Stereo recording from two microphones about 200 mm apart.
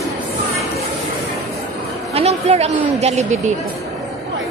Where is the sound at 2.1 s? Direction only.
30° right (ahead or behind).